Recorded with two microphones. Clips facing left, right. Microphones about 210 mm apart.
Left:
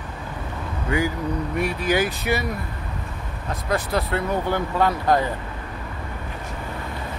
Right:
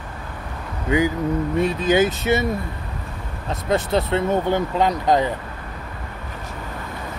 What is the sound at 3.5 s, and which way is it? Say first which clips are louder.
Speech: right 4 dB; 25° right (ahead or behind).